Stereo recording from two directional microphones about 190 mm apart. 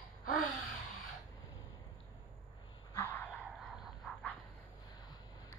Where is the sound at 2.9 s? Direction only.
15° left (ahead or behind).